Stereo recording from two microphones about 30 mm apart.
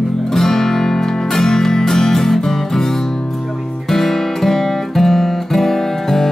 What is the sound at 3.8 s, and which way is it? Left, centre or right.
Music, centre.